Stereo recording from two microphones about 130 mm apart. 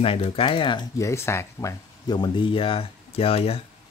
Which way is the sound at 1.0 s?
20° left (ahead or behind).